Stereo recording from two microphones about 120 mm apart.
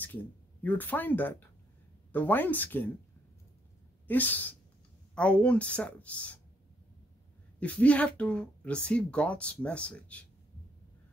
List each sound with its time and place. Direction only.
0.0 s speech: 15° left (ahead or behind)
4.1 s speech: 15° left (ahead or behind)
7.6 s speech: 10° left (ahead or behind)